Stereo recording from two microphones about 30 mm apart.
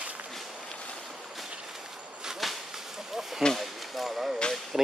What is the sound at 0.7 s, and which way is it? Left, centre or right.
Boat, left.